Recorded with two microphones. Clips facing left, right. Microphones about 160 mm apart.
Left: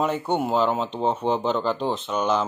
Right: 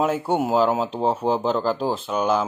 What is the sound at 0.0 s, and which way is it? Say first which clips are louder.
Speech: right 2 dB; 5° right (ahead or behind).